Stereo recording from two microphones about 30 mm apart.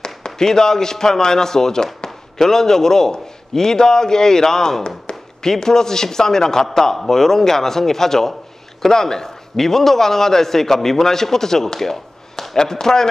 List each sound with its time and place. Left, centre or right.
0.0 s a man's voice: left
4.8 s a sound: left
5.5 s a man's voice: centre